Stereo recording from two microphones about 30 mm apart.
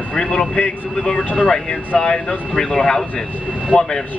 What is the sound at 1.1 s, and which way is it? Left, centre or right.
Speech, left.